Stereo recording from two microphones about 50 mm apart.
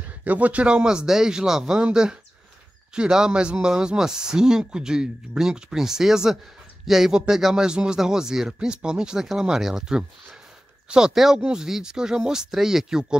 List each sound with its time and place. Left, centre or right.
0.2 s a man's voice: right
0.8 s speech: centre
2.9 s speech: centre